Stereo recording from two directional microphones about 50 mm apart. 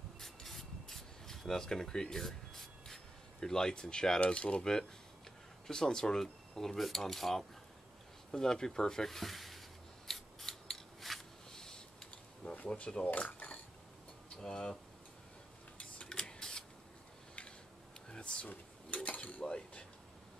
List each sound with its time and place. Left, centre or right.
0.2 s rub: centre
4.2 s speech: left
5.7 s cutlery: centre
8.3 s a sound: centre
12.6 s speech: left
14.3 s speech: centre
15.8 s printer: left
18.1 s a sound: left
19.0 s mechanisms: left